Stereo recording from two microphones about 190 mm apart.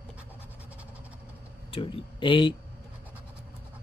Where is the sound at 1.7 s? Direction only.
25° left (ahead or behind).